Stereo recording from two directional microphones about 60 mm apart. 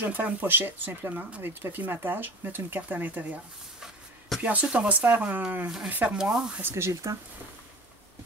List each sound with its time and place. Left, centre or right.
0.0 s speech: right
4.4 s speech: right
6.1 s speech: centre
6.7 s speech: right